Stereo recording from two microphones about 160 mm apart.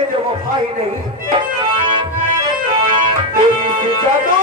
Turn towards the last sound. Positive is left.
turn(degrees=-30)  # may be behind; listen again after turning